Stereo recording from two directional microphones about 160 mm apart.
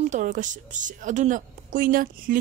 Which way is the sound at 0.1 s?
50° right (ahead or behind).